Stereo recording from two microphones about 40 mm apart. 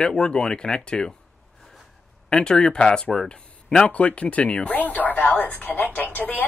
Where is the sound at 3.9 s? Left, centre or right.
Left.